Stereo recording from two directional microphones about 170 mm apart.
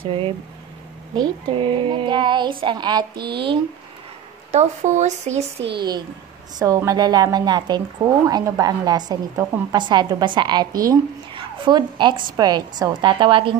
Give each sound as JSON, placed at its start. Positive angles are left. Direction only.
{"t": 0.0, "sound": "a woman's voice", "side_deg": -30}
{"t": 4.5, "sound": "speech", "side_deg": -45}
{"t": 5.6, "sound": "speech", "side_deg": -85}
{"t": 6.6, "sound": "a woman's voice", "side_deg": -20}